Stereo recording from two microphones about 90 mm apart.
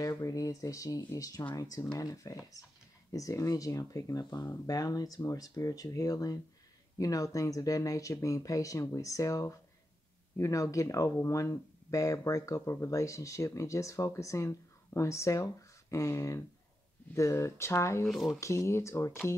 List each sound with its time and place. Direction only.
0.0 s speech: 40° left (ahead or behind)
18.0 s speech: centre (ahead or behind)
18.4 s speech: 35° left (ahead or behind)